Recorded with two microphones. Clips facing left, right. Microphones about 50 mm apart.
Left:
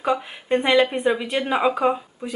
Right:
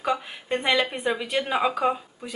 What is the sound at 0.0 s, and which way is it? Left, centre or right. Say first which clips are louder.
Speech: left 3 dB; centre.